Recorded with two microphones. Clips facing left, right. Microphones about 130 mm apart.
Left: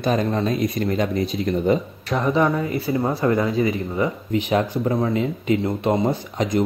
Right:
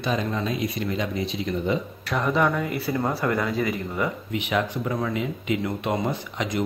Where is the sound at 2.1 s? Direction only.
15° left (ahead or behind).